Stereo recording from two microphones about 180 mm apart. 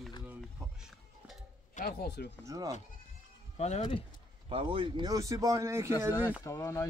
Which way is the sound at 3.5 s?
35° left (ahead or behind).